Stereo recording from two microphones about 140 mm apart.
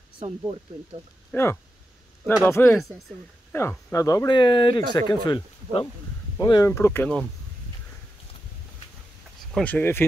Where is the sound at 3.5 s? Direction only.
15° left (ahead or behind).